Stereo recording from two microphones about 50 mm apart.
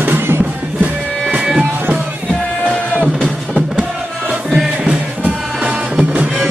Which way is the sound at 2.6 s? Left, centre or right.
Centre.